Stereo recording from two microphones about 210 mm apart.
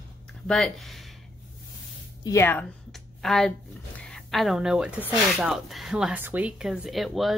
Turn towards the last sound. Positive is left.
turn(degrees=0)  # may be behind; listen again after turning